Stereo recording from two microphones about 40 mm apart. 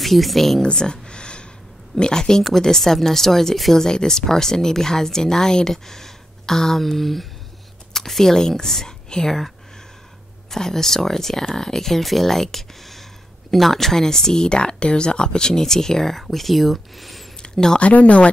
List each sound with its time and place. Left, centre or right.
0.0 s speech: centre
0.6 s a sound: centre
2.0 s a woman's voice: centre
10.5 s speech: centre
17.4 s a sound: centre
17.7 s speech: left